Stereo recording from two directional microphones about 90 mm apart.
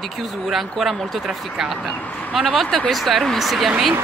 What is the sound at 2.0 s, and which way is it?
Speech, 20° left (ahead or behind).